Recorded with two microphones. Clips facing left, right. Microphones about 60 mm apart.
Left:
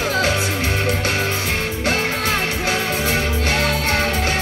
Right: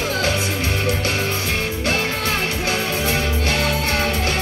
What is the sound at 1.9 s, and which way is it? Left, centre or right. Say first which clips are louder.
Music: left 2 dB; left.